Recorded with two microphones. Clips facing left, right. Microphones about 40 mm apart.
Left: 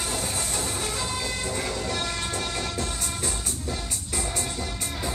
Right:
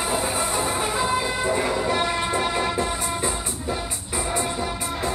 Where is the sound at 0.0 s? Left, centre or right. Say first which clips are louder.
Right 6 dB; centre.